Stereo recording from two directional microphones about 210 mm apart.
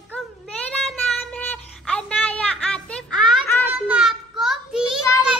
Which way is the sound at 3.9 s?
5° right (ahead or behind).